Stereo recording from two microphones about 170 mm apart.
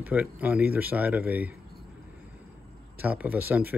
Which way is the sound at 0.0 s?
10° right (ahead or behind).